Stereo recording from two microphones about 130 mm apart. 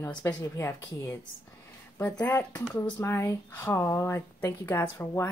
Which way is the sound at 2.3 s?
20° left (ahead or behind).